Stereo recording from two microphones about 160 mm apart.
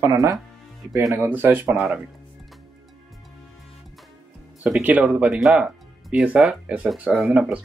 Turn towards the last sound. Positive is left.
turn(degrees=-5)  # may be behind; listen again after turning